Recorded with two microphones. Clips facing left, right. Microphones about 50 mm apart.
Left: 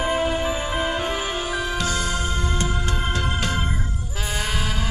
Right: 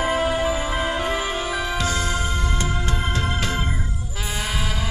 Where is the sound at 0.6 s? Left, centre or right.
Left.